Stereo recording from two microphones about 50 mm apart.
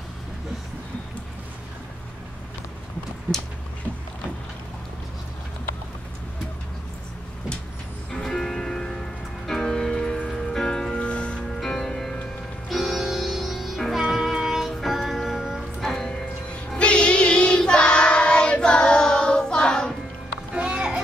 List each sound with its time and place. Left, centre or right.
8.1 s music: centre
11.6 s music: centre
12.6 s music: centre
16.7 s child singing: left
20.5 s music: centre